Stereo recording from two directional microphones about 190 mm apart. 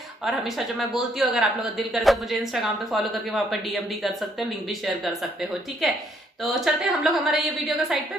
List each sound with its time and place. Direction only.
0.2 s speech: centre (ahead or behind)